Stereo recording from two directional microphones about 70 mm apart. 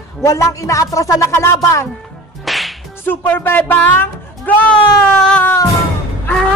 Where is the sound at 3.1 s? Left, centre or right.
Left; by 5.4 s centre.